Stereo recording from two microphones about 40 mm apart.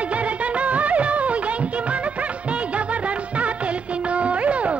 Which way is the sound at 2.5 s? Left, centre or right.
Right.